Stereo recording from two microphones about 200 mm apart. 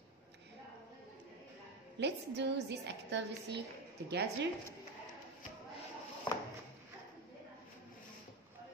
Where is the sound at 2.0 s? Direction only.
60° right (ahead or behind).